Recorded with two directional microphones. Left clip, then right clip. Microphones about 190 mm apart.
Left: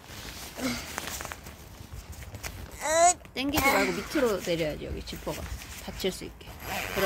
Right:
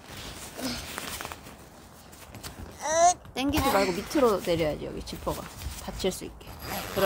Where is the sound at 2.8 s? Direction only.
45° left (ahead or behind).